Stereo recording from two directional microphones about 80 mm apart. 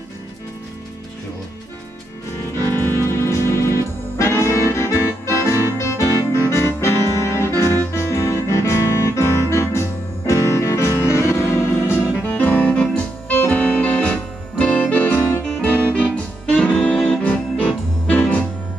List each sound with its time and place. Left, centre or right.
2.5 s music: left
12.3 s music: centre
15.4 s music: centre